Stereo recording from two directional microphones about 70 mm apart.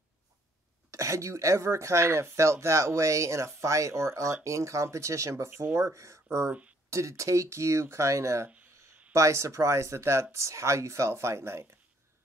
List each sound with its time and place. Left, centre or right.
0.9 s speech: right